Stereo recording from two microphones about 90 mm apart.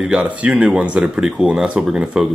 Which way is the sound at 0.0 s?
10° right (ahead or behind).